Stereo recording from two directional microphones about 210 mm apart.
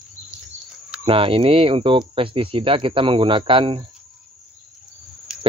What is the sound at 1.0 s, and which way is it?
Speech, 25° right (ahead or behind).